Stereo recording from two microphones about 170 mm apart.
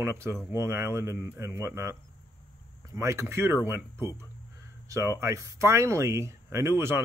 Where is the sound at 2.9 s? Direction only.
15° right (ahead or behind).